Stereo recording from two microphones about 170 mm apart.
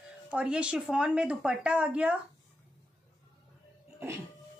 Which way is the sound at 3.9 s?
15° right (ahead or behind).